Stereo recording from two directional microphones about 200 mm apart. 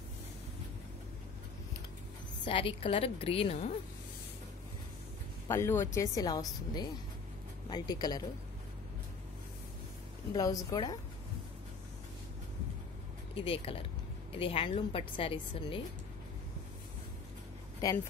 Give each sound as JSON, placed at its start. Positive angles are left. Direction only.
{"t": 2.4, "sound": "a woman's voice", "side_deg": 25}
{"t": 5.5, "sound": "speech", "side_deg": 10}
{"t": 7.7, "sound": "a woman's voice", "side_deg": 20}
{"t": 10.3, "sound": "a woman's voice", "side_deg": 20}
{"t": 13.3, "sound": "a woman's voice", "side_deg": 25}
{"t": 17.7, "sound": "speech", "side_deg": 15}